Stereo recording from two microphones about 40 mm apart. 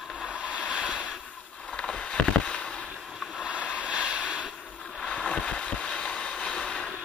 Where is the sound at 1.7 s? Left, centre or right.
Left.